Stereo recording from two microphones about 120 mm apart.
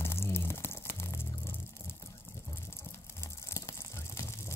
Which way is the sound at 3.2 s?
25° left (ahead or behind).